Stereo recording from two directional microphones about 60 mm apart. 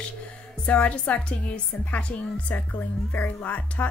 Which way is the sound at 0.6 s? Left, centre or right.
Left.